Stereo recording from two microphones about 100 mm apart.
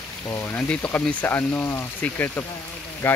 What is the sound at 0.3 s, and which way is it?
Speech, 20° left (ahead or behind).